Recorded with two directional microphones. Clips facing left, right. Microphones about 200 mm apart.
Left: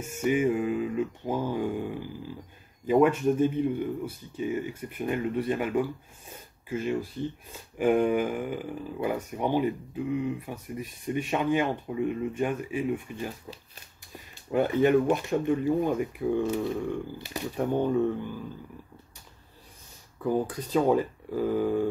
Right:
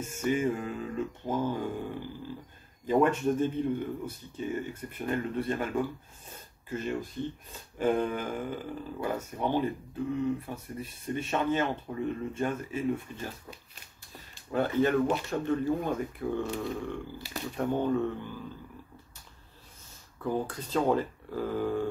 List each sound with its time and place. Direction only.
0.5 s a sound: 5° left (ahead or behind)
0.7 s speech: 10° left (ahead or behind)
14.5 s speech: 15° left (ahead or behind)
20.2 s speech: 10° left (ahead or behind)